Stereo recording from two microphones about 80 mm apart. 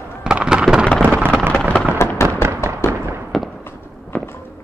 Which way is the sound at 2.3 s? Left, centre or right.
Right.